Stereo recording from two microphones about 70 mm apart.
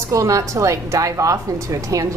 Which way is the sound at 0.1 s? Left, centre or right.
Right.